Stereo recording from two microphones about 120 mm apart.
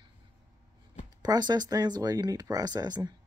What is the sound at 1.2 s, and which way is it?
Speech, 35° right (ahead or behind).